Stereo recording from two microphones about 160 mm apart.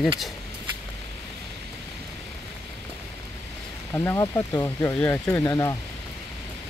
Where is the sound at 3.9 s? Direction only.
20° left (ahead or behind).